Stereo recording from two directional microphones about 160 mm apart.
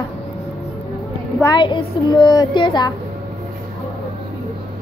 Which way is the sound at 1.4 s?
30° left (ahead or behind).